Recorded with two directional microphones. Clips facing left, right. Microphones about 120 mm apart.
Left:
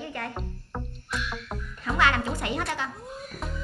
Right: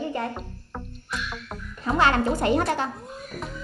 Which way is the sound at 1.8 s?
35° right (ahead or behind).